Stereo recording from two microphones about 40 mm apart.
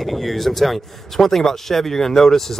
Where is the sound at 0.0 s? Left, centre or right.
Centre.